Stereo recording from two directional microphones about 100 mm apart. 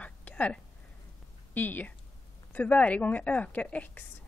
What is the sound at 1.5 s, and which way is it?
A woman's voice, 15° left (ahead or behind).